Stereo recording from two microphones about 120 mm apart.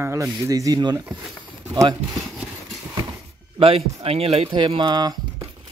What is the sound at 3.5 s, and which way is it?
Speech, 55° right (ahead or behind).